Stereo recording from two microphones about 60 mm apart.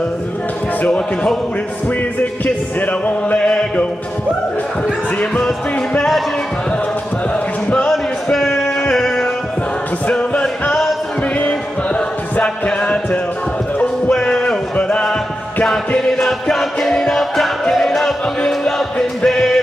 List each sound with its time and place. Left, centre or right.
0.8 s a man's voice: centre
2.1 s music: left
5.9 s speech: centre
7.9 s music: centre
10.0 s music: centre
14.1 s music: centre